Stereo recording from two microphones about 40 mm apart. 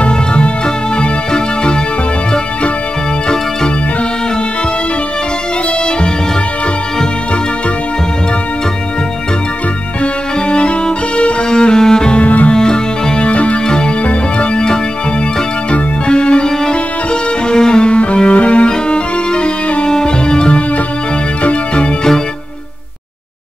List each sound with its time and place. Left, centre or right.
0.0 s music: left
11.1 s music: left
12.2 s music: left
12.5 s music: centre
13.3 s music: left
15.7 s organ: left
16.4 s music: centre